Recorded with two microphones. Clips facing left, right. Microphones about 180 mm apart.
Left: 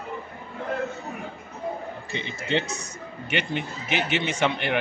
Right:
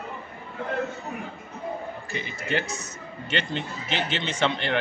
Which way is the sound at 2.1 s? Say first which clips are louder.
Left 2 dB; 25° left (ahead or behind).